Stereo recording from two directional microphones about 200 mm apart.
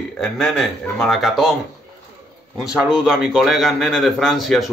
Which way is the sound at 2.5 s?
5° right (ahead or behind).